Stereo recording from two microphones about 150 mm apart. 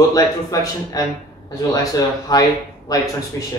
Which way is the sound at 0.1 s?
25° left (ahead or behind).